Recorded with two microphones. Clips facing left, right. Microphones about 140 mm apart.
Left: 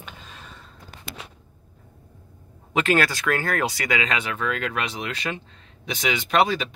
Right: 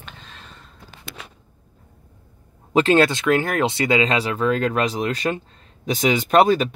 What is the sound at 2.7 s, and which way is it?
Speech, 30° right (ahead or behind).